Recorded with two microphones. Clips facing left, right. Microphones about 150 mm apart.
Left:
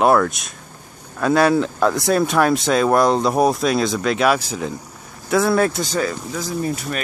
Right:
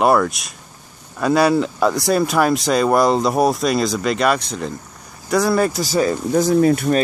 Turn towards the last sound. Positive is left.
turn(degrees=-65)  # may be behind; listen again after turning